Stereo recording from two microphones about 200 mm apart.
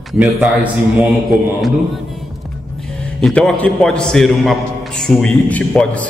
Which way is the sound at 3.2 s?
5° left (ahead or behind).